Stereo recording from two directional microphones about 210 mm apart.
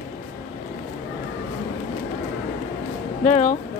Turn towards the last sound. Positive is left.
turn(degrees=35)  # may be behind; listen again after turning